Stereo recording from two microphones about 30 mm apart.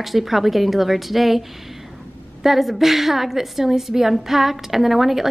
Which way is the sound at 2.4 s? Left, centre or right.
Centre.